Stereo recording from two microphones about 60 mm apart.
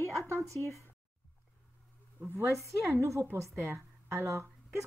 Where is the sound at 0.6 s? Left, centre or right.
Left.